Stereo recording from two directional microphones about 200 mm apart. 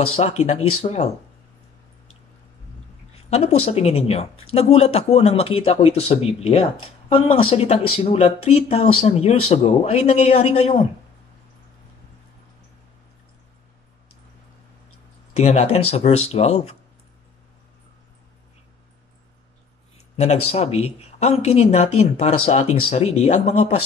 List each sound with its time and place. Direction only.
0.1 s speech: 35° left (ahead or behind)
3.3 s speech: 30° left (ahead or behind)
15.3 s speech: 30° left (ahead or behind)
20.2 s speech: 35° left (ahead or behind)